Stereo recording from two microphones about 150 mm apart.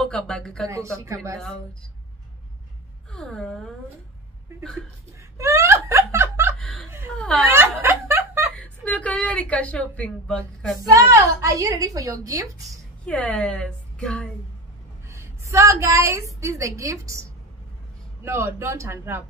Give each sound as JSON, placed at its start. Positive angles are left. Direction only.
{"t": 0.0, "sound": "speech", "side_deg": 5}
{"t": 0.7, "sound": "a woman's voice", "side_deg": -20}
{"t": 3.1, "sound": "speech", "side_deg": 5}
{"t": 5.4, "sound": "a sound", "side_deg": -20}
{"t": 6.6, "sound": "speech", "side_deg": 0}
{"t": 7.4, "sound": "snicker", "side_deg": -15}
{"t": 8.5, "sound": "a woman's voice", "side_deg": 10}
{"t": 10.9, "sound": "a woman's voice", "side_deg": -20}
{"t": 13.0, "sound": "a woman's voice", "side_deg": 10}
{"t": 15.0, "sound": "a woman's voice", "side_deg": -20}